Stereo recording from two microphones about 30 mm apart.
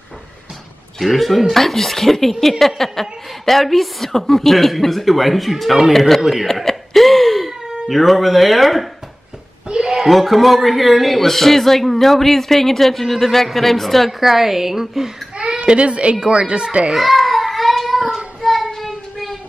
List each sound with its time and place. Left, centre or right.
0.9 s a woman's voice: centre
9.7 s a sound: right
9.9 s speech: centre
14.2 s a woman's voice: centre
15.3 s baby cry: right
16.3 s speech: right
16.9 s child singing: centre